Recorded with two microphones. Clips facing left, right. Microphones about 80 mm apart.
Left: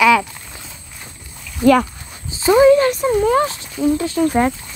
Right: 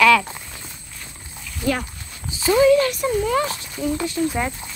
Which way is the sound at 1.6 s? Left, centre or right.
Left.